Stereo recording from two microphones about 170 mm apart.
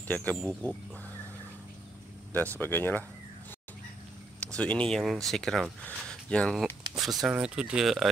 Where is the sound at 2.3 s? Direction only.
10° left (ahead or behind).